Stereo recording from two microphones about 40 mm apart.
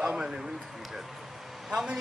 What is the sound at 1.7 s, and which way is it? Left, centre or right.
Speech, centre.